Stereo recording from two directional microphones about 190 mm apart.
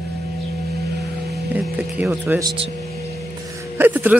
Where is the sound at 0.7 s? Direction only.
55° right (ahead or behind).